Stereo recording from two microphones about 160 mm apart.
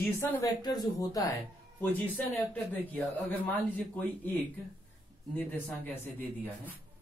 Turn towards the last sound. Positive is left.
turn(degrees=10)  # may be behind; listen again after turning